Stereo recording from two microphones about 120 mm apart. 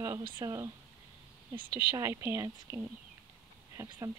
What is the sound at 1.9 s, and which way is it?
A woman's voice, 20° right (ahead or behind).